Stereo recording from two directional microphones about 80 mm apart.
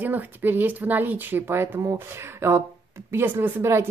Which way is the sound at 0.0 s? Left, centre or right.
Right.